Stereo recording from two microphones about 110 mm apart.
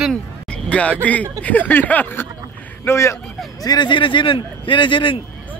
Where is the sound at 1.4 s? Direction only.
15° left (ahead or behind).